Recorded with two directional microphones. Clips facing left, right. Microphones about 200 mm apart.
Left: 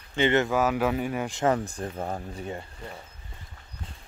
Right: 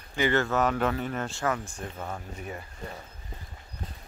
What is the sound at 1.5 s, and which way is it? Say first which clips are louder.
Speech: left 5 dB; 35° left (ahead or behind).